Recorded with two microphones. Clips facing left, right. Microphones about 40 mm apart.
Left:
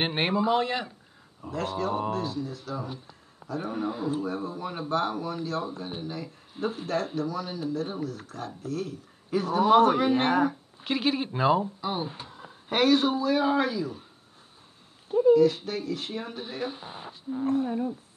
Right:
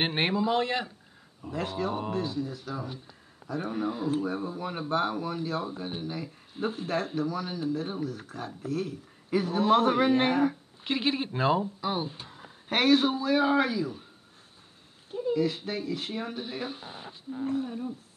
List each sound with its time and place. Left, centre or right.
0.0 s speech: centre
7.1 s speech: centre
9.6 s speech: centre
9.8 s speech: centre
15.3 s speech: centre
17.6 s speech: centre